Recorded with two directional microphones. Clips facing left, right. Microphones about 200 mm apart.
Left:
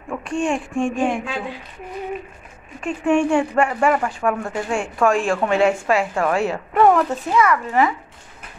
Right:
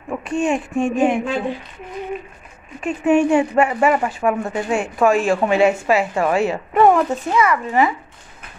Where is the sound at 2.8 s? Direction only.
5° right (ahead or behind).